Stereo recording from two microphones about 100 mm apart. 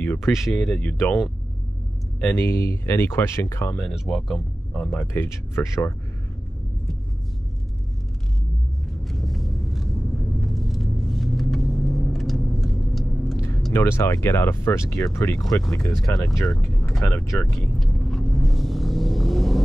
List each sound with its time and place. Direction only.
0.0 s a sound: 20° left (ahead or behind)
0.3 s speech: 5° right (ahead or behind)
0.7 s speech: 20° left (ahead or behind)
2.3 s speech: 25° left (ahead or behind)
3.9 s speech: centre (ahead or behind)
5.0 s speech: 30° left (ahead or behind)
9.0 s vehicle: centre (ahead or behind)
13.7 s speech: 25° left (ahead or behind)
17.6 s vehicle: centre (ahead or behind)